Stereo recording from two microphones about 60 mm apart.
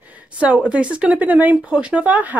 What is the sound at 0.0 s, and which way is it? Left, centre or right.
Speech, right.